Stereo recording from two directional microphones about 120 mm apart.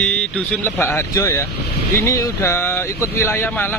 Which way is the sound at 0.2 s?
5° left (ahead or behind).